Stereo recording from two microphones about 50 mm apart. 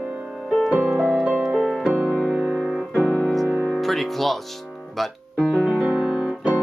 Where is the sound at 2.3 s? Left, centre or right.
Centre.